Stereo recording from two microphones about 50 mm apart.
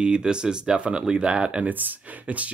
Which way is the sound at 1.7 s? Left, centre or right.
Right.